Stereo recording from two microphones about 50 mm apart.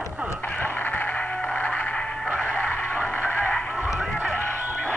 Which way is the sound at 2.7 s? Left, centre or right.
Left.